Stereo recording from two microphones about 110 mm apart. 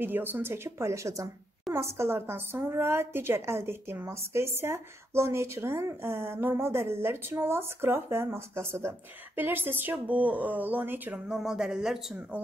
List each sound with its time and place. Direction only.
0.0 s a woman's voice: 20° right (ahead or behind)
11.2 s speech: 5° right (ahead or behind)